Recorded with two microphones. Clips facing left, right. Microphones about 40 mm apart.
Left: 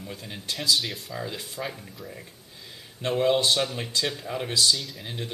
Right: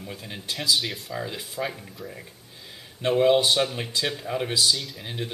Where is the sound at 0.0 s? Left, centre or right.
Centre.